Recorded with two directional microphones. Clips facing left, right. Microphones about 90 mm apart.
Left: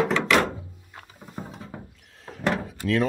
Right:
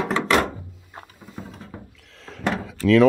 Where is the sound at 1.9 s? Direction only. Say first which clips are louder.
Right 1 dB; 90° right.